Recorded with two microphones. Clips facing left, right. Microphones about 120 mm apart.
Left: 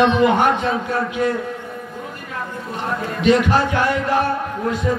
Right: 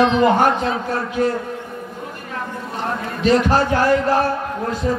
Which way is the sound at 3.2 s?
35° right (ahead or behind).